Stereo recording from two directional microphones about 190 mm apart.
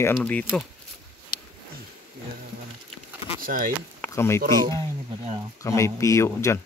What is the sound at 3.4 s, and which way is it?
Speech, 45° right (ahead or behind).